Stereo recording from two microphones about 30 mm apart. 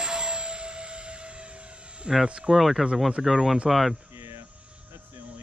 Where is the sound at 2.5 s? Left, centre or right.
Centre.